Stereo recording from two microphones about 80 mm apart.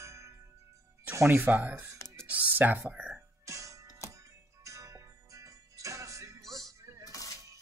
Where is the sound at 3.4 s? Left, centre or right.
Right.